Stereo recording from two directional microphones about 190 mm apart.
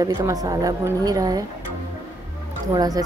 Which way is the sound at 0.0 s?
20° right (ahead or behind).